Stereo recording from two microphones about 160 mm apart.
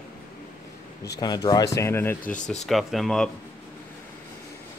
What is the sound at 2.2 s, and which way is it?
Speech, 50° left (ahead or behind).